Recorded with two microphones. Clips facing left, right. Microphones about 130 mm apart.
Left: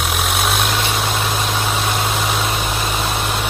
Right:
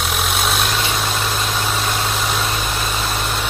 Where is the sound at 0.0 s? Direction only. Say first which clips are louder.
Left 1 dB; centre (ahead or behind).